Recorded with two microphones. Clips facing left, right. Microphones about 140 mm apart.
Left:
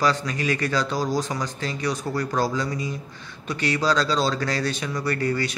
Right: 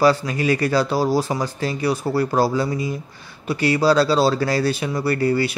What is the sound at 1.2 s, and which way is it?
Speech, 30° right (ahead or behind).